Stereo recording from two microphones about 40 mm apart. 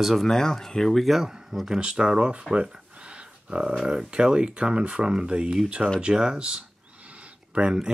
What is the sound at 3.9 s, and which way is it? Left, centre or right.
Speech, right.